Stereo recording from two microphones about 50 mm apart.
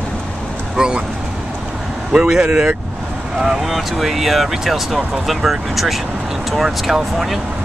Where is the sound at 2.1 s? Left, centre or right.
Centre.